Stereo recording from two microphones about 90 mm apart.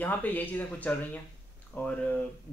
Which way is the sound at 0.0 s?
20° left (ahead or behind).